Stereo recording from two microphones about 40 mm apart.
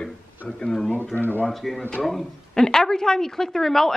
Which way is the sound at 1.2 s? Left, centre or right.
Left.